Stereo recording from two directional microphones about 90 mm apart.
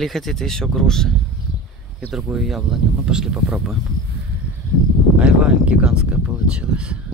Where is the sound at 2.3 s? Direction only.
5° right (ahead or behind).